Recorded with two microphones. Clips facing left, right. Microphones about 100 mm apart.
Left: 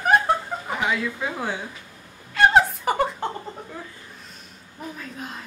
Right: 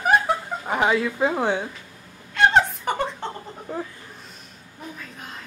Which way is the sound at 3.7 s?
35° right (ahead or behind).